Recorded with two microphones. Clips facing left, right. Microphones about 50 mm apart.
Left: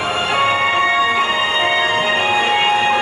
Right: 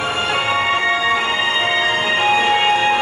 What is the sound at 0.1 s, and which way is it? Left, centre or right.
Music, centre.